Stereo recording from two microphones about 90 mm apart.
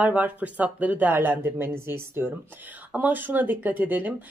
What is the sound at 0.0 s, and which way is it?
Speech, 15° right (ahead or behind).